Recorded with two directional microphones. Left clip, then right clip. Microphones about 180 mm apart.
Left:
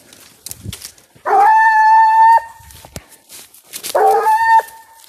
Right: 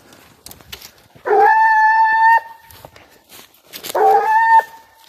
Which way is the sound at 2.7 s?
40° right (ahead or behind).